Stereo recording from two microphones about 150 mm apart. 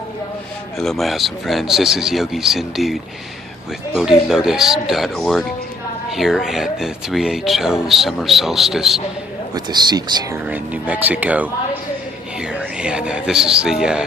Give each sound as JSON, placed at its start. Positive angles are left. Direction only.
{"t": 0.7, "sound": "speech", "side_deg": 0}
{"t": 9.5, "sound": "a man's voice", "side_deg": -30}
{"t": 10.3, "sound": "speech", "side_deg": -10}